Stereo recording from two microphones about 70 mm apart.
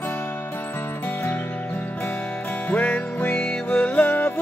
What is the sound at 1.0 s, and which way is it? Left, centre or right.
Music, left.